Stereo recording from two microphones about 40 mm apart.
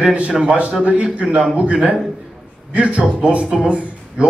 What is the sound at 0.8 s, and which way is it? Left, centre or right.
A man's voice, right.